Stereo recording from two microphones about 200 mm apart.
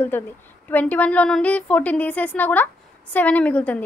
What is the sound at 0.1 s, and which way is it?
A woman's voice, 10° left (ahead or behind).